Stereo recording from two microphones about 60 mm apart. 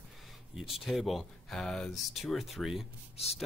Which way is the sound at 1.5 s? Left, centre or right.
Centre.